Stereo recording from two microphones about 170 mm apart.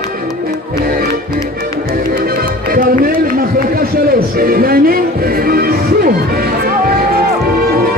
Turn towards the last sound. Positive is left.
turn(degrees=-60)  # may be behind; listen again after turning